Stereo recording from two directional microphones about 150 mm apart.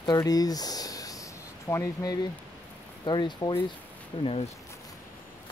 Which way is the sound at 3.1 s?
30° left (ahead or behind).